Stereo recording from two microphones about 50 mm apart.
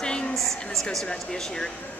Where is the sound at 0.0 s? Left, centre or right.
Centre.